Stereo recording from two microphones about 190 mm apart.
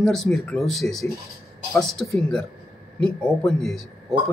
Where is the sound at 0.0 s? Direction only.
Centre (ahead or behind).